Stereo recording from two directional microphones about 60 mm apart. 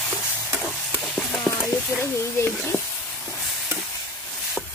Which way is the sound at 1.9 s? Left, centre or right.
Left.